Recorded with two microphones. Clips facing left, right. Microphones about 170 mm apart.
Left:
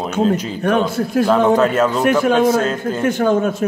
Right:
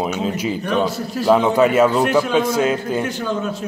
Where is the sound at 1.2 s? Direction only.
10° right (ahead or behind).